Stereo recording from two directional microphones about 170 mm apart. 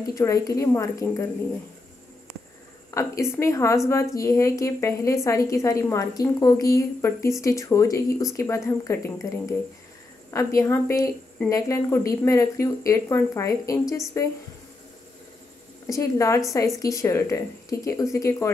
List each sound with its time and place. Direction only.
0.1 s a woman's voice: 20° left (ahead or behind)
2.9 s a woman's voice: 15° left (ahead or behind)
10.3 s a woman's voice: 15° left (ahead or behind)
15.9 s a woman's voice: 20° left (ahead or behind)